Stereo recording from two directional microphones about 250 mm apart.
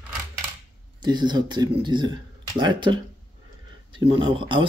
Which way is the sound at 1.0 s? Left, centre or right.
Centre.